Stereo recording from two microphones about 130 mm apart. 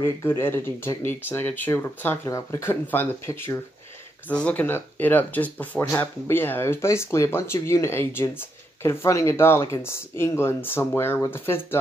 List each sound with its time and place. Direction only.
0.0 s speech: 20° left (ahead or behind)